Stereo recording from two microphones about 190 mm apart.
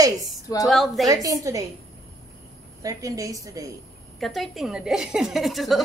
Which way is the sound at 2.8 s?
15° right (ahead or behind).